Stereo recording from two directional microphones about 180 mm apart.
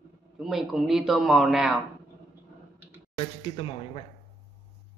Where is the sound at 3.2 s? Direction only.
30° left (ahead or behind).